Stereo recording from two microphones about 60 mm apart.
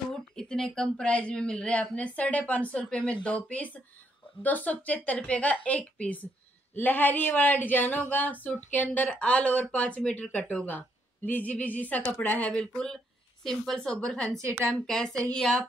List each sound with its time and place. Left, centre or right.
0.1 s speech: centre
12.7 s speech: centre